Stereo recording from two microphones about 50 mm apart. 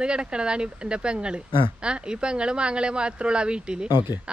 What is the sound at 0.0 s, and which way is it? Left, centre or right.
Speech, centre.